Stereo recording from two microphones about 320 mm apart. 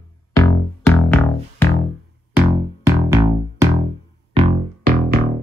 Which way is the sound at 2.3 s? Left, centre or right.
Centre.